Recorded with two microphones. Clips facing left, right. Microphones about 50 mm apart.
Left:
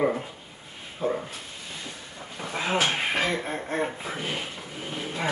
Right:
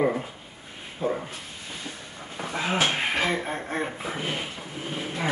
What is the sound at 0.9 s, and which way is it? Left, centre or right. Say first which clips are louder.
Dog: even; centre.